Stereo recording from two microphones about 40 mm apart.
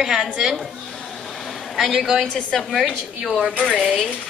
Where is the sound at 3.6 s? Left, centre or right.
Centre.